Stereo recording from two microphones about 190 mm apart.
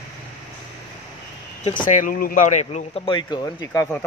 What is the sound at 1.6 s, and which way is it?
Speech, 40° left (ahead or behind).